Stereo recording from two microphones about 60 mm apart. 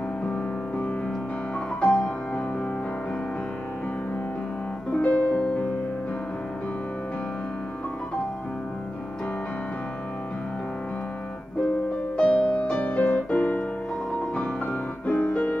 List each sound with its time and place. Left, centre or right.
1.8 s music: centre
5.0 s music: left
12.2 s music: left